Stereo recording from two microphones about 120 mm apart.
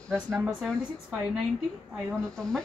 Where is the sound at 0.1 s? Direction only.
20° right (ahead or behind).